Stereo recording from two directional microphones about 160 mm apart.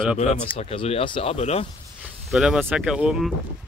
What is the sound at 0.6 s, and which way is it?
Speech, 40° left (ahead or behind).